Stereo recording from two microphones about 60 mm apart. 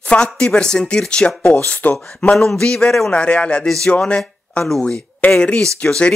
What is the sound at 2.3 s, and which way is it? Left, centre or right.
Speech, centre.